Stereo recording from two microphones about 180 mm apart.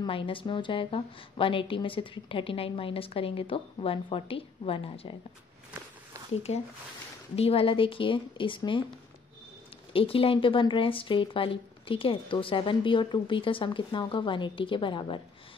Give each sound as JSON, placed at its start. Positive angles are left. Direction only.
{"t": 0.0, "sound": "speech", "side_deg": 30}
{"t": 6.5, "sound": "speech", "side_deg": 35}
{"t": 9.9, "sound": "speech", "side_deg": 30}